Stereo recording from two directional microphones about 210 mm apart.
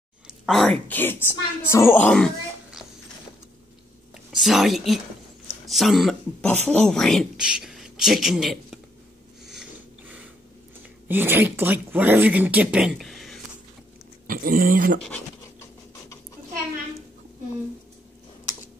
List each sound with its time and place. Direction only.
0.5 s a woman's voice: centre (ahead or behind)
4.3 s speech: centre (ahead or behind)
11.1 s speech: 10° right (ahead or behind)
14.2 s speech: 40° right (ahead or behind)